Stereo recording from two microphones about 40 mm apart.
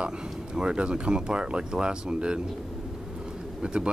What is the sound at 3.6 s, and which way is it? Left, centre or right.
Speech, right.